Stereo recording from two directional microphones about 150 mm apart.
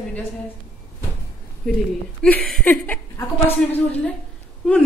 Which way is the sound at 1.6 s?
Centre (ahead or behind).